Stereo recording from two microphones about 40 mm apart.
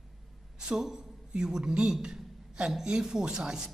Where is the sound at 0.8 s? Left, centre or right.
Centre.